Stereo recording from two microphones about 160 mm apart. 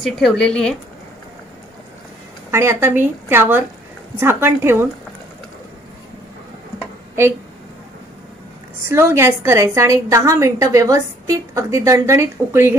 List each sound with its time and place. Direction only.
0.0 s speech: 5° left (ahead or behind)
2.5 s a woman's voice: 15° right (ahead or behind)
8.8 s a woman's voice: 15° right (ahead or behind)